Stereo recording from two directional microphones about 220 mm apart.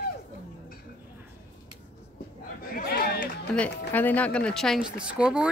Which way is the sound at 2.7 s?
45° left (ahead or behind).